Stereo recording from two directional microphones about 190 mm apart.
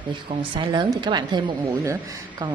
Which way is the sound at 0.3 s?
25° right (ahead or behind).